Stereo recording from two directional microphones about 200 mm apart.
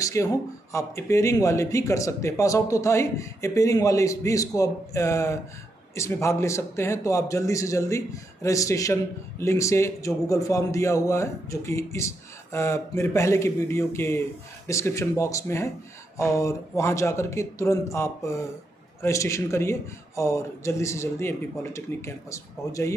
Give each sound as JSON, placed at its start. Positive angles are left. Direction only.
{"t": 0.0, "sound": "a man's voice", "side_deg": 15}